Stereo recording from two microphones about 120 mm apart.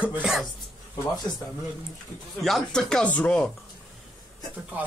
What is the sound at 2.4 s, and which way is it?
Speech, 5° left (ahead or behind).